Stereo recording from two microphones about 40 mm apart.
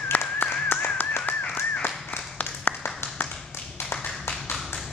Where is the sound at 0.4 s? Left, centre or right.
Left.